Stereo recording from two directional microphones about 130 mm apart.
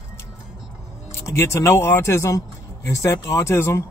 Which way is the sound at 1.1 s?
20° left (ahead or behind).